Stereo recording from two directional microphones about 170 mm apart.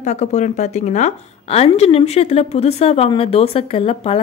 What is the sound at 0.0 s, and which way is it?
A woman's voice, 40° left (ahead or behind).